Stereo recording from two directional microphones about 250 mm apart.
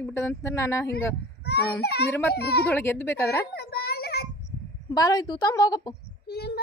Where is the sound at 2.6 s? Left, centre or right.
Centre.